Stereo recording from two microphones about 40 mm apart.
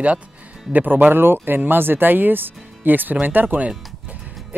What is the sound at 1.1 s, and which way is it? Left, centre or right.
Speech, right.